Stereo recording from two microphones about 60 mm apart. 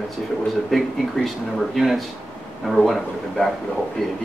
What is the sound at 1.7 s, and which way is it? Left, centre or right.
Speech, centre.